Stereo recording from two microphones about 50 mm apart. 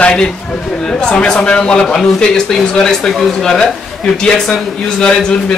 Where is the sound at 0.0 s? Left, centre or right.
Centre.